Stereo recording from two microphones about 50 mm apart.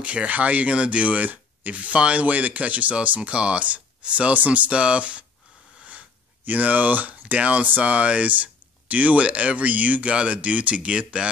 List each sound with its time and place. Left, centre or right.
0.0 s speech: right
6.4 s speech: right